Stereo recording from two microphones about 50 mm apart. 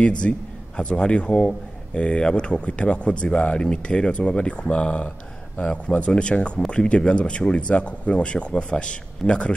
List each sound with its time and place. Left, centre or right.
0.0 s speech: left